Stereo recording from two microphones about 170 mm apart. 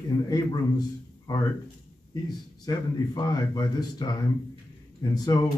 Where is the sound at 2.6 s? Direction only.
25° left (ahead or behind).